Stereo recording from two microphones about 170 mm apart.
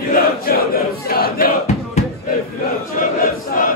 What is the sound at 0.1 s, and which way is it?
Crowd, 60° left (ahead or behind).